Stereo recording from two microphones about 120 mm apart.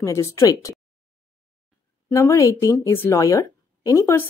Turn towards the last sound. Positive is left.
turn(degrees=20)  # may be behind; listen again after turning